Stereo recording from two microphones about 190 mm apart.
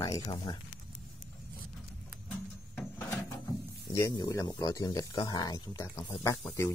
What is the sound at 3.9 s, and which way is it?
Speech, 15° left (ahead or behind).